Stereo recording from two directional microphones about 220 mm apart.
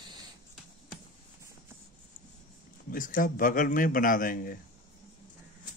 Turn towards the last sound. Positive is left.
turn(degrees=40)  # may be behind; listen again after turning